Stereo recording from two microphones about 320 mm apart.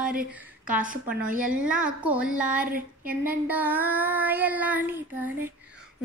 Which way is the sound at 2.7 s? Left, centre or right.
Right.